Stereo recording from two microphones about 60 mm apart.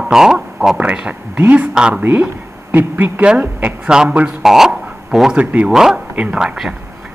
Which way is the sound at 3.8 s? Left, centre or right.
Centre.